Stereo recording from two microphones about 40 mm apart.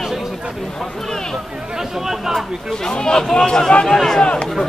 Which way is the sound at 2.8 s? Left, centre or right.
Centre.